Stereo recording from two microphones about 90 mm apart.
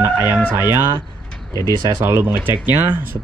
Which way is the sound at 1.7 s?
50° right (ahead or behind).